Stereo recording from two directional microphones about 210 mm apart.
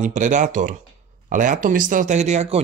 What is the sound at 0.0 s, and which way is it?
Speech, 35° right (ahead or behind).